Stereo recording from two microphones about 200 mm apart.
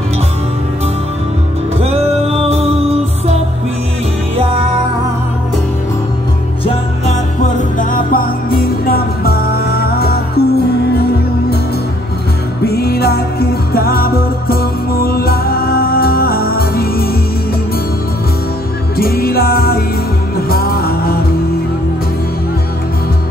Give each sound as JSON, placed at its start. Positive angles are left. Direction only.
{"t": 1.8, "sound": "music", "side_deg": -30}
{"t": 7.5, "sound": "music", "side_deg": 45}
{"t": 12.6, "sound": "music", "side_deg": 50}
{"t": 18.9, "sound": "music", "side_deg": 50}